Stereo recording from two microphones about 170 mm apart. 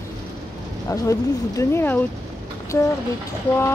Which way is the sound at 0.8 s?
20° left (ahead or behind).